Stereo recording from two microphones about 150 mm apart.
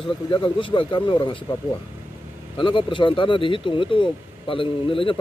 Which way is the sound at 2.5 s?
35° left (ahead or behind).